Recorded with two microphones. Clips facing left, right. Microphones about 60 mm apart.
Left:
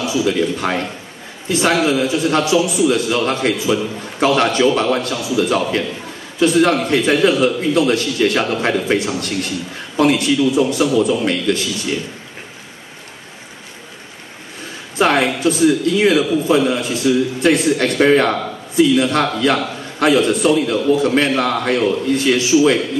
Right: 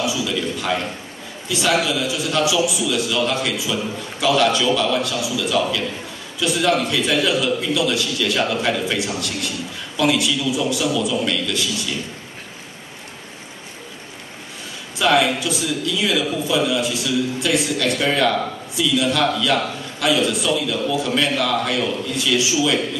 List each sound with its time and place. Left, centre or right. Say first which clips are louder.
0.0 s a man's voice: left 5 dB; left
15.0 s a man's voice: left 2 dB; left